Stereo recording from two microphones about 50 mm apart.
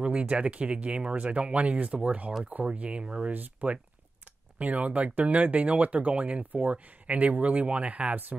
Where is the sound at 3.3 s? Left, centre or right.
Right.